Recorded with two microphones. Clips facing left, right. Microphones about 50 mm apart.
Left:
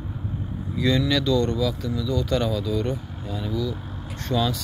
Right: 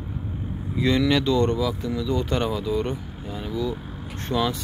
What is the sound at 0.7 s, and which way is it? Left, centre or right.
Speech, right.